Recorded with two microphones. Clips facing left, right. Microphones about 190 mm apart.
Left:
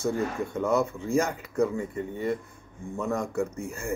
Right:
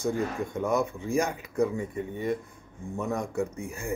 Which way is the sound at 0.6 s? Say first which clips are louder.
Left 2 dB; 15° right (ahead or behind).